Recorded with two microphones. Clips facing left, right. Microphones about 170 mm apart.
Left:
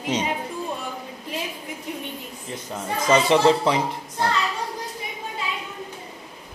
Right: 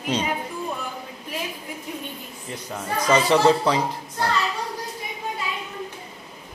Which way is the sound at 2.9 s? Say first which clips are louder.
Left 1 dB; 20° left (ahead or behind).